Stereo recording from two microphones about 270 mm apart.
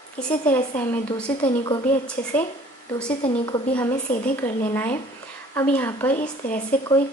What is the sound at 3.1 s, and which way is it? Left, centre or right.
Speech, centre.